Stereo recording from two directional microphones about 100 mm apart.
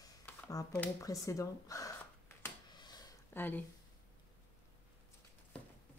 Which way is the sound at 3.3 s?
20° left (ahead or behind).